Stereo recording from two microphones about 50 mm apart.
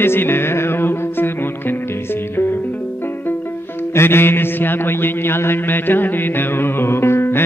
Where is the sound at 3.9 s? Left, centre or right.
Left.